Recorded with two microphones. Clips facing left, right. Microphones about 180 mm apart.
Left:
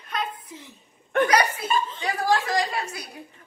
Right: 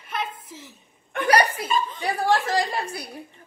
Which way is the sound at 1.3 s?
35° right (ahead or behind).